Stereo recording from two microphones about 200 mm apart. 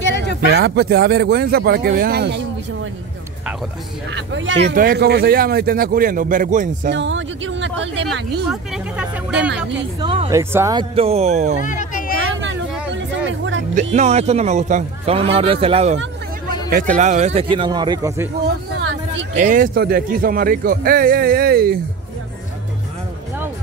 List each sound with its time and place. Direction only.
0.0 s a sound: 60° left (ahead or behind)
0.4 s speech: 55° right (ahead or behind)
4.1 s speech: 70° right (ahead or behind)
4.7 s speech: 50° right (ahead or behind)
6.9 s speech: 65° right (ahead or behind)
8.1 s speech: centre (ahead or behind)
9.9 s speech: 25° right (ahead or behind)
10.3 s speech: 15° right (ahead or behind); by 11.5 s 35° right (ahead or behind)
11.6 s children playing: 40° left (ahead or behind)
12.2 s a sound: 70° right (ahead or behind)
13.9 s a man's voice: 35° right (ahead or behind); by 18.3 s 15° right (ahead or behind)
19.3 s speech: 40° right (ahead or behind)